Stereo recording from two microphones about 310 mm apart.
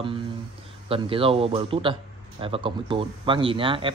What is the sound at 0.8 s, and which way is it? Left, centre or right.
Speech, centre.